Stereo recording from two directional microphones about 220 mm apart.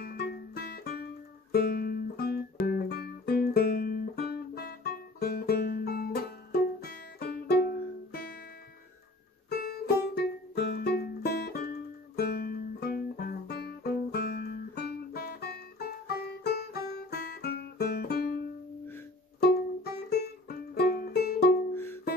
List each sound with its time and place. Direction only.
0.0 s music: 45° left (ahead or behind)
9.5 s music: 45° left (ahead or behind)
19.4 s music: 45° left (ahead or behind)
21.7 s music: 10° left (ahead or behind)